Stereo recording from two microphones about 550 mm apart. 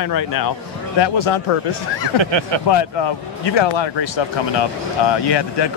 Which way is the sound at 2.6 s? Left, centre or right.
Left.